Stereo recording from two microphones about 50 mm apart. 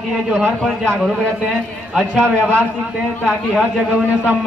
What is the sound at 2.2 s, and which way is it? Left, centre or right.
Speech, right.